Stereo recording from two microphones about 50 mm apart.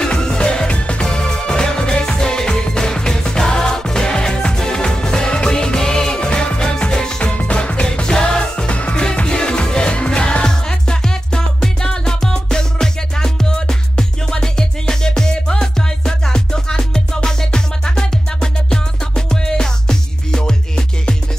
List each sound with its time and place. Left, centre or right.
0.0 s music: centre